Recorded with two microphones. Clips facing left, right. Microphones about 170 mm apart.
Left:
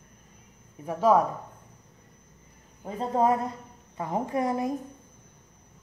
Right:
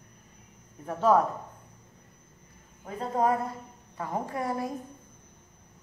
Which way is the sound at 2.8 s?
25° left (ahead or behind).